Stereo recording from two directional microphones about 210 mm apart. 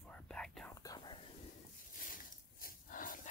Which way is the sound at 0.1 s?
5° left (ahead or behind).